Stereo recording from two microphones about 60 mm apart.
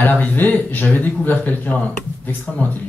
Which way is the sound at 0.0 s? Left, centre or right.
Left.